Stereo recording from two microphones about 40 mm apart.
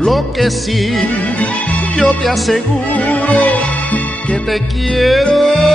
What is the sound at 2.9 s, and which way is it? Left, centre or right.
Music, left.